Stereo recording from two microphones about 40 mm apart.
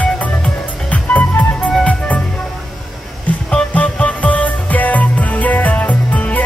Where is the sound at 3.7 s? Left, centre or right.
Left.